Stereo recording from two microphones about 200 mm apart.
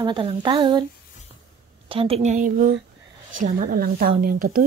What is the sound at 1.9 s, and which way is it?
A woman's voice, 30° right (ahead or behind).